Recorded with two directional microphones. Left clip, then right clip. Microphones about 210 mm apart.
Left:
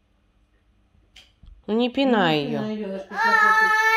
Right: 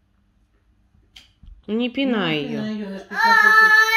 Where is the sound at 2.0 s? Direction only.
30° left (ahead or behind).